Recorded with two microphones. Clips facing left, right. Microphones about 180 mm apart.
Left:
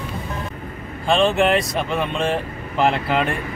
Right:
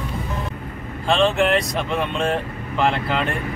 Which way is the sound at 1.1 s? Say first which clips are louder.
Left 1 dB; centre (ahead or behind).